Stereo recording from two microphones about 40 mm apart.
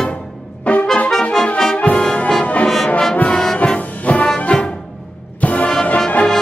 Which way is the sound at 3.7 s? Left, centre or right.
Left.